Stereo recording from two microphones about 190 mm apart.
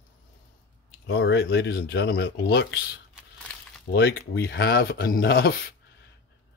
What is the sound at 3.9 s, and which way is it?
Speech, 55° left (ahead or behind).